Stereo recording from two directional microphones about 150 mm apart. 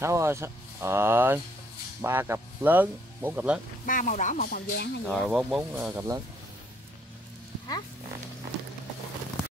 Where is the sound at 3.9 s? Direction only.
60° left (ahead or behind); by 4.9 s 80° left.